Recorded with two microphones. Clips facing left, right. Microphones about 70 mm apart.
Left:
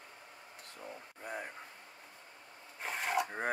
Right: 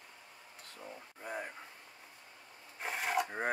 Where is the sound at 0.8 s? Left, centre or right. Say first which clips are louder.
Left 1 dB; centre.